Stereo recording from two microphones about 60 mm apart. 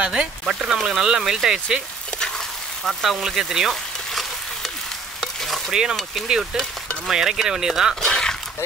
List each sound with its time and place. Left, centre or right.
0.0 s a sound: centre
0.5 s speech: centre
2.1 s frying: centre
5.7 s speech: centre
7.1 s speech: centre
7.9 s a sound: centre